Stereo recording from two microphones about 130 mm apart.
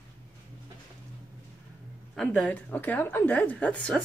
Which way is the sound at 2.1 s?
5° left (ahead or behind).